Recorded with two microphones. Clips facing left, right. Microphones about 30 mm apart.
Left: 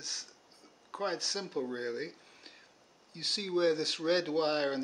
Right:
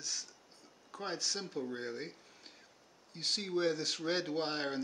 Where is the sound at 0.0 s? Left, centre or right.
Left.